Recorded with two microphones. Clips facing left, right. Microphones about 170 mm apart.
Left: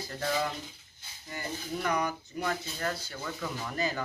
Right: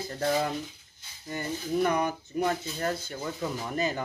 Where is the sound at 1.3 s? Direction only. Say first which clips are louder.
Right 6 dB; 25° right (ahead or behind).